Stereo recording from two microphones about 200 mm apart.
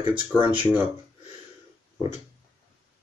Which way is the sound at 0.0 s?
25° right (ahead or behind).